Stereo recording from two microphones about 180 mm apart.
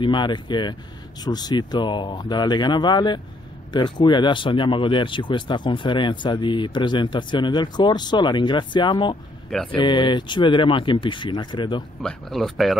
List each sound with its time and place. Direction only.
0.0 s speech: 25° left (ahead or behind)
9.5 s speech: 5° left (ahead or behind)
9.8 s speech: 25° left (ahead or behind)
12.0 s speech: 5° left (ahead or behind)